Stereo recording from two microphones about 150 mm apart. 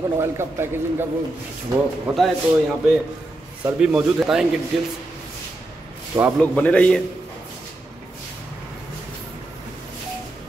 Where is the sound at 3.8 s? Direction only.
5° right (ahead or behind).